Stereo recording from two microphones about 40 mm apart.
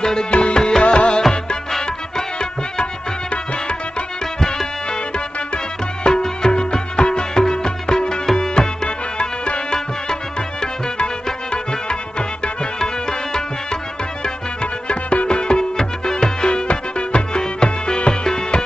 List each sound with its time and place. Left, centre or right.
0.0 s music: centre
4.4 s music: centre
6.0 s music: centre
14.2 s music: left